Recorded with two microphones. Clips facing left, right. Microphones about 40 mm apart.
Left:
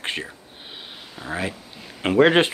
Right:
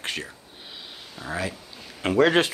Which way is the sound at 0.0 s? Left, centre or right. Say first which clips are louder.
Left 3 dB; left.